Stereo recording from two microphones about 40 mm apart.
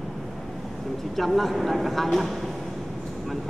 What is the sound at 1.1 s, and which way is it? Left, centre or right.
Speech, centre.